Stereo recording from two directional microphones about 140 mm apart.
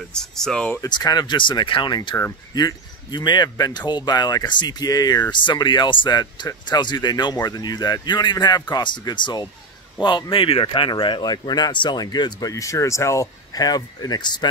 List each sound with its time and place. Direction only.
0.1 s speech: 5° left (ahead or behind)
0.8 s speech: 30° left (ahead or behind)